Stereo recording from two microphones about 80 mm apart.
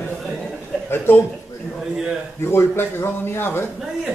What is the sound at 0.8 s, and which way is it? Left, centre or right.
Speech, left.